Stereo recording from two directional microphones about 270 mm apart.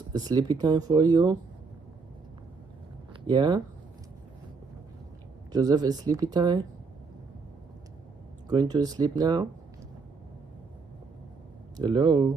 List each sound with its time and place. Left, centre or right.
0.1 s speech: centre
3.3 s speech: centre
5.5 s speech: centre
8.5 s speech: centre
11.7 s speech: centre